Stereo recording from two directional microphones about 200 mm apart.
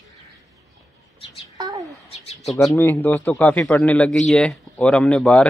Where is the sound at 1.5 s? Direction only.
20° right (ahead or behind).